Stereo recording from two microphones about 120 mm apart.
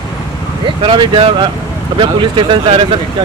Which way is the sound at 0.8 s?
45° right (ahead or behind).